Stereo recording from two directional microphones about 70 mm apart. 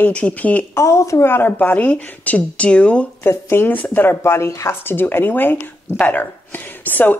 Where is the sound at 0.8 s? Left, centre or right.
Left.